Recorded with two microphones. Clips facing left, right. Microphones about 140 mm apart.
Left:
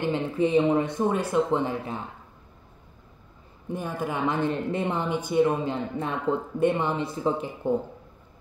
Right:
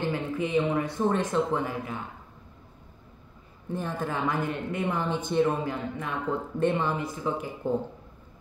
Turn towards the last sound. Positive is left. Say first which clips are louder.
# left 4 dB
turn(degrees=30)  # may be behind; listen again after turning